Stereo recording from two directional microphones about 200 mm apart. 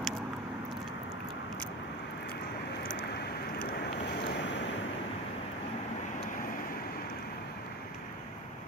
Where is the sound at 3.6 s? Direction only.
55° left (ahead or behind).